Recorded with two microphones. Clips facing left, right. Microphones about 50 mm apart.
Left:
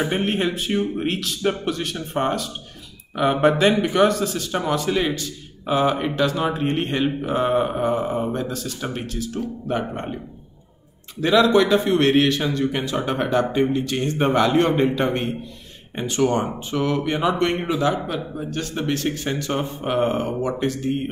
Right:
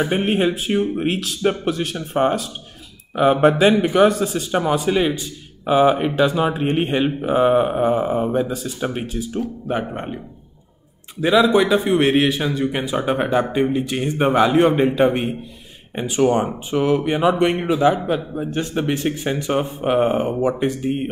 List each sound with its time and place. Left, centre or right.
0.0 s speech: centre
9.8 s a man's voice: centre
11.1 s speech: centre
17.8 s speech: right